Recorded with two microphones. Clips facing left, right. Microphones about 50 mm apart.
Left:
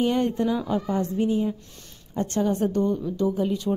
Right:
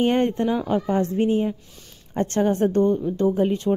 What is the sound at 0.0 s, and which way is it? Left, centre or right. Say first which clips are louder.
Speech: right 3 dB; right.